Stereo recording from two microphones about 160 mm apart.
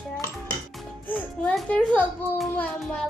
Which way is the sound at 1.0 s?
10° left (ahead or behind).